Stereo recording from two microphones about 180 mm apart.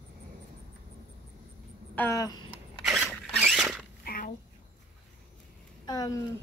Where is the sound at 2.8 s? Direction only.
Centre (ahead or behind).